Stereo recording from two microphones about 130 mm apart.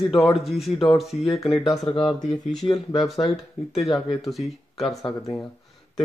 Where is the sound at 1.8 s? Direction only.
35° left (ahead or behind).